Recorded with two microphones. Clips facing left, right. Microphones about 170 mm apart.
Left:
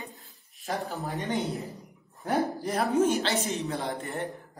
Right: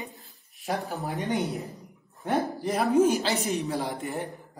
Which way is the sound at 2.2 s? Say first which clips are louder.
Right 1 dB; centre (ahead or behind).